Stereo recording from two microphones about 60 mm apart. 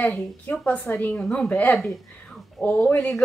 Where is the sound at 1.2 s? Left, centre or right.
Centre.